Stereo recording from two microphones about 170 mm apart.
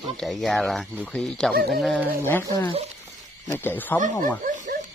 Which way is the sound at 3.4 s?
10° left (ahead or behind).